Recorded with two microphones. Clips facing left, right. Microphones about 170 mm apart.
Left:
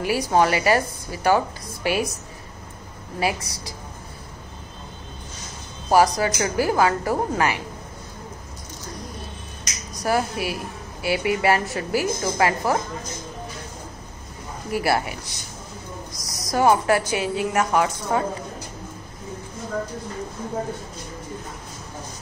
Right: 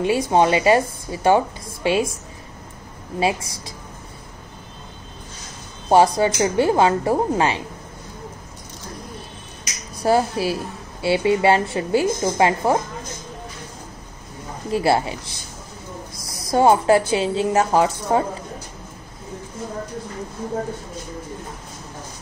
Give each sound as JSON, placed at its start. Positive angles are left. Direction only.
{"t": 0.0, "sound": "a woman's voice", "side_deg": -25}
{"t": 3.2, "sound": "a woman's voice", "side_deg": -25}
{"t": 5.9, "sound": "a woman's voice", "side_deg": -25}
{"t": 9.9, "sound": "a woman's voice", "side_deg": -30}
{"t": 14.7, "sound": "a woman's voice", "side_deg": -25}
{"t": 16.1, "sound": "a sound", "side_deg": -25}
{"t": 17.1, "sound": "a woman's voice", "side_deg": -25}